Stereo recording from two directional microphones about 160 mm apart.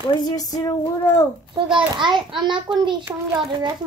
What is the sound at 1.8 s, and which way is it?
A child's voice, 30° right (ahead or behind).